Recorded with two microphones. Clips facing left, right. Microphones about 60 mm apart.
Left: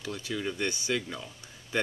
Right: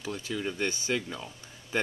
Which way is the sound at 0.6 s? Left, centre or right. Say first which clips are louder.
Right 1 dB; right.